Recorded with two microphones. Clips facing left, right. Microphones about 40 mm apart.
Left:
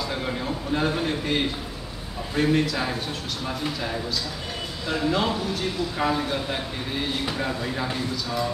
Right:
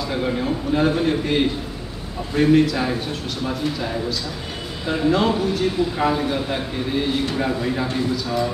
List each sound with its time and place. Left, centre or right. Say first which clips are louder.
0.0 s a man's voice: right 5 dB; centre
4.8 s speech: right 5 dB; centre
5.1 s a man's voice: right 5 dB; centre